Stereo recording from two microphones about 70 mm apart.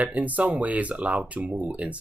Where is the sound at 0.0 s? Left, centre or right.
Right.